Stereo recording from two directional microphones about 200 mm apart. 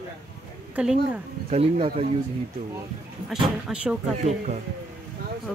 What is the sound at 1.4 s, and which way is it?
Speech, 30° right (ahead or behind).